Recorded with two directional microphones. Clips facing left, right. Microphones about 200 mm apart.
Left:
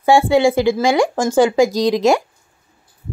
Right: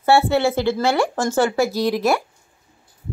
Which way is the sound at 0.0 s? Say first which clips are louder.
Left 4 dB; 15° left (ahead or behind).